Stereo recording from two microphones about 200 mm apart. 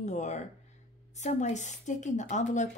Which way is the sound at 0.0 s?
35° left (ahead or behind).